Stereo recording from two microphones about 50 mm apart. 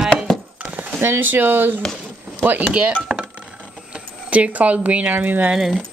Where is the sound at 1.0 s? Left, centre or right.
Right.